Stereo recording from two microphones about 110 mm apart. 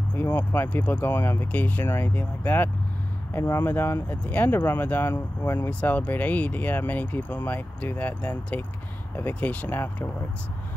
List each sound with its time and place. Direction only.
0.1 s speech: 15° left (ahead or behind)